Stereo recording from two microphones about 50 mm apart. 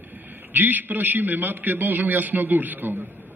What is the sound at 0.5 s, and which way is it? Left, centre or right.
A man's voice, right.